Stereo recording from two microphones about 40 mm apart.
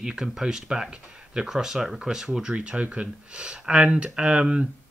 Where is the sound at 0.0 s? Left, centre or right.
Centre.